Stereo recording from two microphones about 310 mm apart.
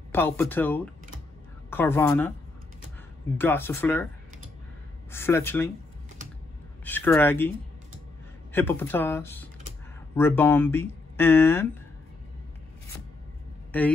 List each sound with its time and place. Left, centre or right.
0.1 s speech: centre
3.3 s speech: centre
5.1 s speech: centre
6.8 s speech: centre
8.5 s speech: centre
13.7 s a sound: centre